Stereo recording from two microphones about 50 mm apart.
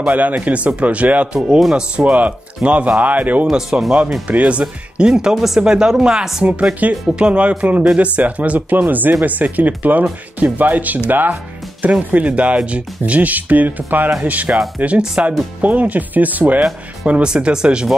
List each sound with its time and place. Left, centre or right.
0.0 s speech: right
1.7 s speech: centre
2.1 s speech: right
3.4 s speech: centre
4.3 s speech: right; by 6.4 s centre
6.4 s speech: right
12.1 s speech: right
17.3 s speech: centre